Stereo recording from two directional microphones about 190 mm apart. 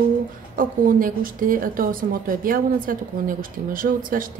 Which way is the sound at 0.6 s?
45° right (ahead or behind).